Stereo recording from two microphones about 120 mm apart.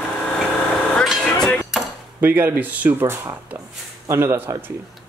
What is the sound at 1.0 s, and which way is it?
Vehicle, centre (ahead or behind).